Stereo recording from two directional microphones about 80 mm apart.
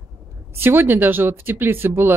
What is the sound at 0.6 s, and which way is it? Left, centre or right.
Speech, right.